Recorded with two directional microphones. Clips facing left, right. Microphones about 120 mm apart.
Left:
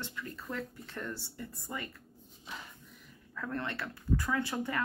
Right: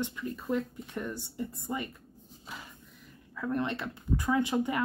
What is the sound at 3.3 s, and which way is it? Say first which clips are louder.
Speech: right 6 dB; 15° right (ahead or behind).